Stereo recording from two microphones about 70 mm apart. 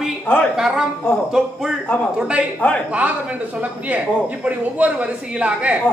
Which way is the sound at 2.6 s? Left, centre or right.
Left.